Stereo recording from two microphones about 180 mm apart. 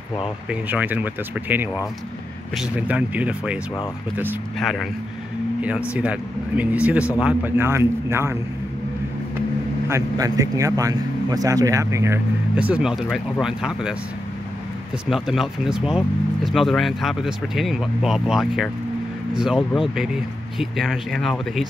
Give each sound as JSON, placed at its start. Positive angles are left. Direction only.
{"t": 0.5, "sound": "speech", "side_deg": -10}
{"t": 4.6, "sound": "speech", "side_deg": 0}
{"t": 9.8, "sound": "speech", "side_deg": -20}
{"t": 15.0, "sound": "speech", "side_deg": 0}